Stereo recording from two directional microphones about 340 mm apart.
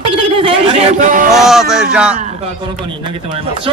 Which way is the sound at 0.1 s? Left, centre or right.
Centre.